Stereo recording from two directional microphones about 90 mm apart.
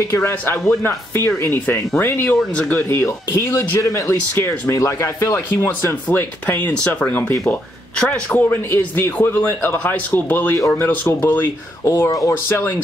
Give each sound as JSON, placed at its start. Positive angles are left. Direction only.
{"t": 0.1, "sound": "speech", "side_deg": 30}